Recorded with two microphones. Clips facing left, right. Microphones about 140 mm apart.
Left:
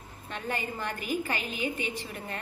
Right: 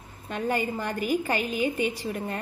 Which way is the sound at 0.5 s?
40° right (ahead or behind).